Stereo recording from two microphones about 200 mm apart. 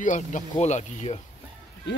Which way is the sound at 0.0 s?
40° left (ahead or behind).